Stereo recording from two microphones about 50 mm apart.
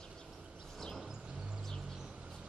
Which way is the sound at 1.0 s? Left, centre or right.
Centre.